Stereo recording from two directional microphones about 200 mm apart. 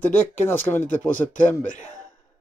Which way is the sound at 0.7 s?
40° left (ahead or behind).